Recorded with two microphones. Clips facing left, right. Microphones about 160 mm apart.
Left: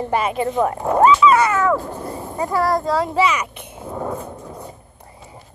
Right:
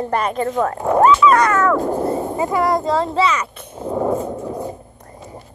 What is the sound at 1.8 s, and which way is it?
Speech, 45° right (ahead or behind).